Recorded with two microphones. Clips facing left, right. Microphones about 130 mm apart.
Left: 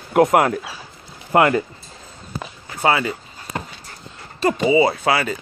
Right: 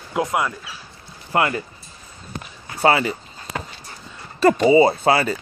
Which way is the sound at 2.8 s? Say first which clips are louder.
Right 1 dB; 30° right (ahead or behind).